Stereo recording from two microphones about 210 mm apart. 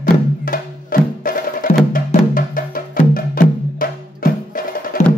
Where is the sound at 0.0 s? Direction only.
40° left (ahead or behind).